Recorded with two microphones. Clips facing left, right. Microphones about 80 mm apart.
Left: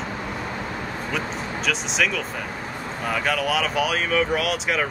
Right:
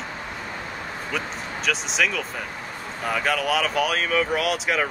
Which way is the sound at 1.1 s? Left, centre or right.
Centre.